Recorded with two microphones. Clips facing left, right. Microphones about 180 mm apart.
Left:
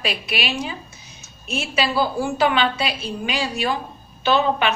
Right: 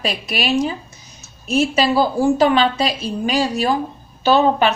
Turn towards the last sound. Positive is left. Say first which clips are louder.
# right 5 dB
turn(degrees=-40)  # may be behind; listen again after turning